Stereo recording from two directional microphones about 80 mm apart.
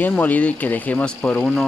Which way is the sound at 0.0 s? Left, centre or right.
Left.